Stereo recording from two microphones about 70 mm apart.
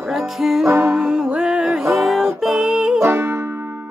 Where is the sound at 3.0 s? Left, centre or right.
Right.